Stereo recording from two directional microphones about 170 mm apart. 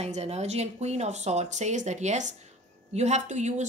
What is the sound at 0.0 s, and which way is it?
A woman's voice, 40° right (ahead or behind).